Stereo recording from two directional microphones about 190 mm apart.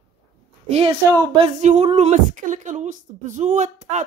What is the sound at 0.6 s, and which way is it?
A woman's voice, 30° right (ahead or behind).